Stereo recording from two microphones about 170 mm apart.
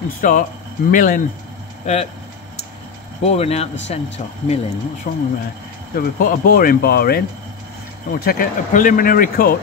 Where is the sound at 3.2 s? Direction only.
35° left (ahead or behind).